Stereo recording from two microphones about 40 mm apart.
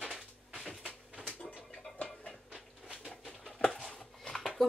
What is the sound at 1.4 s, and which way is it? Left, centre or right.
Music, left.